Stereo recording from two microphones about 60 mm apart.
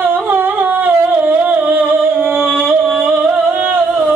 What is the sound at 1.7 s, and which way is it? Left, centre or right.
Music, right.